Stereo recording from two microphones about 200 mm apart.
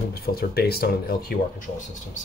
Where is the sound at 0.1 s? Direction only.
50° left (ahead or behind).